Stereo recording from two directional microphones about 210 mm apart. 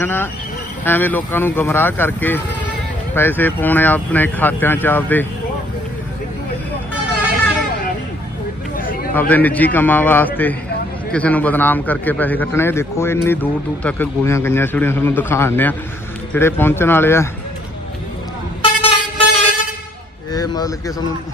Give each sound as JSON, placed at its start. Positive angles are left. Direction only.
{"t": 0.0, "sound": "a man's voice", "side_deg": 10}
{"t": 8.7, "sound": "a sound", "side_deg": 40}
{"t": 9.1, "sound": "a man's voice", "side_deg": 10}
{"t": 18.6, "sound": "vehicle", "side_deg": 25}
{"t": 20.3, "sound": "speech", "side_deg": 20}